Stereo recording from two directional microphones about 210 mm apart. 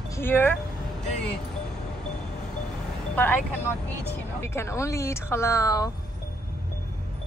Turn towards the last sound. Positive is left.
turn(degrees=15)  # may be behind; listen again after turning